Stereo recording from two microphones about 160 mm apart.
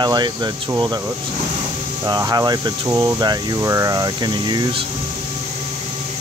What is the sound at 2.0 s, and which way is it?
Speech, 25° right (ahead or behind).